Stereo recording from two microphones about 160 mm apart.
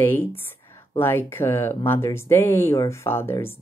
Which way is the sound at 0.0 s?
10° left (ahead or behind).